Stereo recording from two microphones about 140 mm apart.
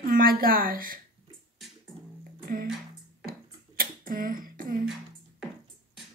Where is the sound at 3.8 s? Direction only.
85° right.